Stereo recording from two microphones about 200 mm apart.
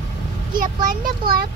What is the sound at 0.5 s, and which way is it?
Speech, 45° right (ahead or behind).